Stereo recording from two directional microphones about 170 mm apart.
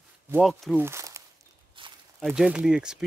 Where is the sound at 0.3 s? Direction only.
Centre (ahead or behind).